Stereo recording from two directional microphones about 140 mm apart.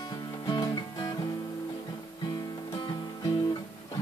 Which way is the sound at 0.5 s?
25° left (ahead or behind).